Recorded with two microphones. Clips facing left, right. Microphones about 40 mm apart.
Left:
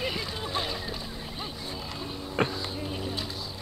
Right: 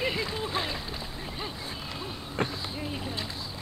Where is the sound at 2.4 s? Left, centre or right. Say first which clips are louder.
Left 3 dB; left.